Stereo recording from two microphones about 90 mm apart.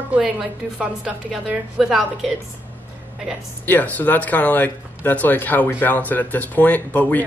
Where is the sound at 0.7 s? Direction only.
10° right (ahead or behind).